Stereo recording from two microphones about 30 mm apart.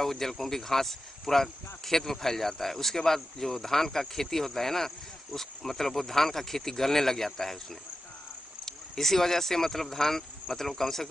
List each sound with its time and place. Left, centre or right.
0.0 s speech: centre
8.6 s speech: centre